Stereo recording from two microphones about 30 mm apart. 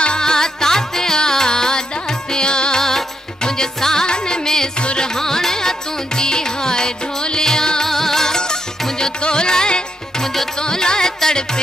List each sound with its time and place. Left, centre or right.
0.2 s music: left
7.9 s music: centre